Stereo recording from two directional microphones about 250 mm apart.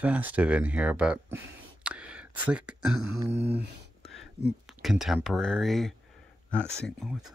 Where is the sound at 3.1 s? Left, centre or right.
Centre.